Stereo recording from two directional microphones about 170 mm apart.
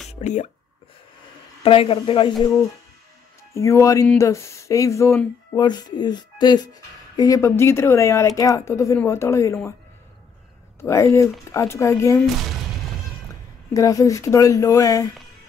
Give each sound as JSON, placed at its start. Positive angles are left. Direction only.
{"t": 0.1, "sound": "speech", "side_deg": 45}
{"t": 1.6, "sound": "speech", "side_deg": 30}
{"t": 3.5, "sound": "speech", "side_deg": 15}
{"t": 10.8, "sound": "speech", "side_deg": 15}
{"t": 12.4, "sound": "speech", "side_deg": 0}
{"t": 13.7, "sound": "speech", "side_deg": 20}